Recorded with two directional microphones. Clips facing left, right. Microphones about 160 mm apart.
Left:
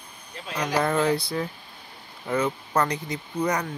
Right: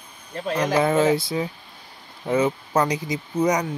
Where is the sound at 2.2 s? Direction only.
20° right (ahead or behind).